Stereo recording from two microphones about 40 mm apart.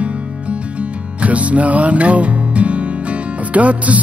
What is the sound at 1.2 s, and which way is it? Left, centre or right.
Music, right.